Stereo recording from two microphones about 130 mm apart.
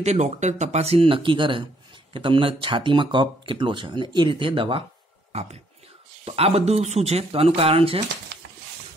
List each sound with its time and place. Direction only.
0.0 s speech: 60° right (ahead or behind)